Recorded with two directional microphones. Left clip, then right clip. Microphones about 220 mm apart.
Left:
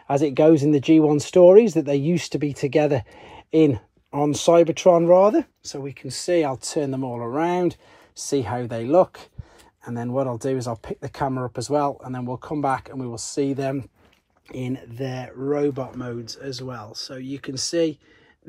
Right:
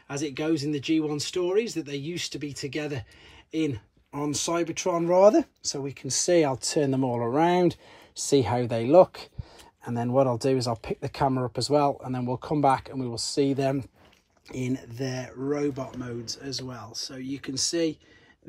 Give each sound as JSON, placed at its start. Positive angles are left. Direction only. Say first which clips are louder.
{"t": 0.3, "sound": "speech", "louder": "left 12 dB", "side_deg": 15}
{"t": 4.9, "sound": "speech", "louder": "even", "side_deg": 0}